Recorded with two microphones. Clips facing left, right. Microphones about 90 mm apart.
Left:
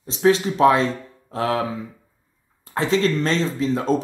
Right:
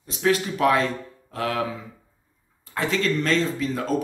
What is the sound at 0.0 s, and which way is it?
Speech, 30° left (ahead or behind).